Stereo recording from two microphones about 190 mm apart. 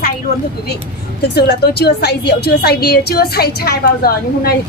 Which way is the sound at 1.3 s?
60° left (ahead or behind).